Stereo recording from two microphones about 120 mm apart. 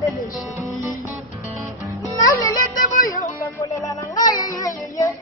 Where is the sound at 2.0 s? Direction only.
25° left (ahead or behind).